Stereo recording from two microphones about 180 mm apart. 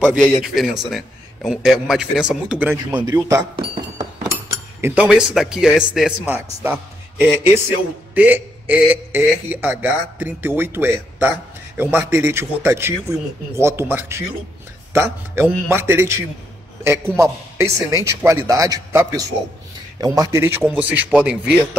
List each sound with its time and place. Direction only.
0.2 s a man's voice: 5° right (ahead or behind); by 4.3 s 20° right (ahead or behind)
4.8 s a man's voice: 5° right (ahead or behind)